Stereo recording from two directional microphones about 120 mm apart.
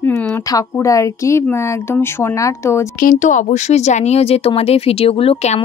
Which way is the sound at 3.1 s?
90° left.